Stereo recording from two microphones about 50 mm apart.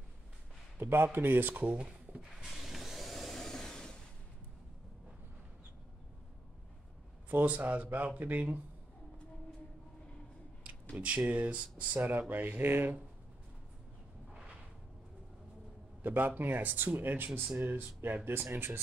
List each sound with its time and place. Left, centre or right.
0.7 s speech: right
1.7 s a sound: right
2.3 s vehicle: centre
7.2 s speech: right
11.0 s speech: right
12.0 s speech: right
14.3 s a sound: centre
16.0 s speech: right